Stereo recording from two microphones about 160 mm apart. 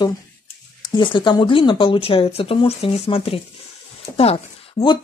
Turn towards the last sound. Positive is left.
turn(degrees=35)  # may be behind; listen again after turning